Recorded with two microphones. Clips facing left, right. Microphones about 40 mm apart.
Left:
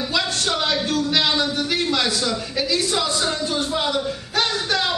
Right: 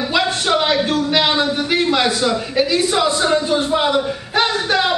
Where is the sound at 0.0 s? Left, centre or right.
Right.